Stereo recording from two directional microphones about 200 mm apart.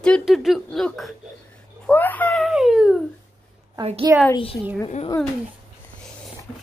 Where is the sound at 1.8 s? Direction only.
10° left (ahead or behind).